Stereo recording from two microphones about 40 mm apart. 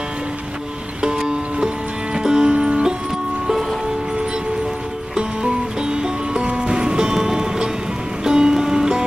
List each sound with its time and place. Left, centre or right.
1.0 s music: centre
5.1 s music: centre